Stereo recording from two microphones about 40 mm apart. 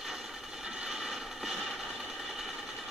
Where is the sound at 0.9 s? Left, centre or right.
Centre.